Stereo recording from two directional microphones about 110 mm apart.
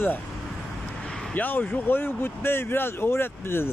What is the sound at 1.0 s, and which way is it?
Vehicle, 5° left (ahead or behind).